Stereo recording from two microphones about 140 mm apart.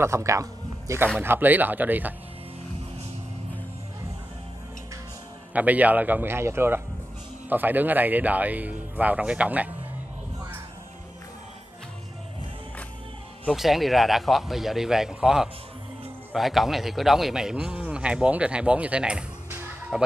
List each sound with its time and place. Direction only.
0.0 s speech: 20° right (ahead or behind)
5.5 s speech: 10° right (ahead or behind)
13.5 s a man's voice: centre (ahead or behind)